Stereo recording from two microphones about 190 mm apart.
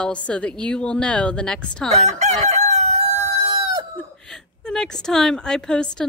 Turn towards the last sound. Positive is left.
turn(degrees=5)  # may be behind; listen again after turning